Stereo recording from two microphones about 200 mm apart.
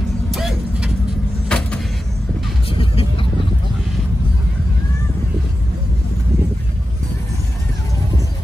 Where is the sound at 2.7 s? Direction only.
25° left (ahead or behind).